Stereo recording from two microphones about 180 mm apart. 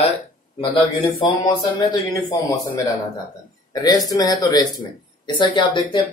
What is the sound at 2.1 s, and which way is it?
Speech, 20° left (ahead or behind).